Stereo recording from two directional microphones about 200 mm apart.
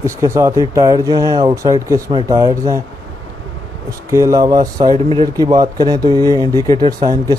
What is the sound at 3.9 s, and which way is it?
Speech, 15° right (ahead or behind).